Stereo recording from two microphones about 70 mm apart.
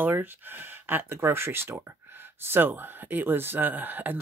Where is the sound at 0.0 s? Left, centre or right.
Right.